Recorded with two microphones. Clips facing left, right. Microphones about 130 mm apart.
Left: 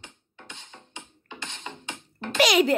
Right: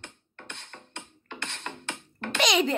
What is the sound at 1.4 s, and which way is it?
Music, 65° right (ahead or behind).